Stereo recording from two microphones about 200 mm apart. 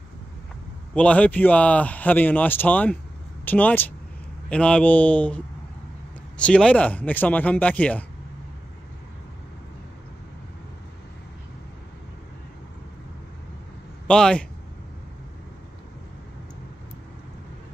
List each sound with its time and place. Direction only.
0.9 s speech: 5° left (ahead or behind)
14.0 s speech: 5° left (ahead or behind)